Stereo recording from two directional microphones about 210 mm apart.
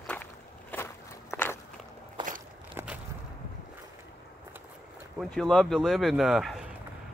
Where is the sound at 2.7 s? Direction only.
5° right (ahead or behind).